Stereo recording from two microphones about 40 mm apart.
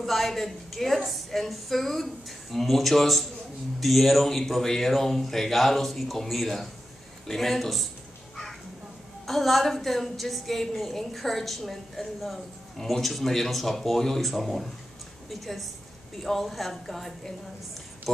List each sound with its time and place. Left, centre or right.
0.0 s a woman's voice: centre
9.2 s a woman's voice: centre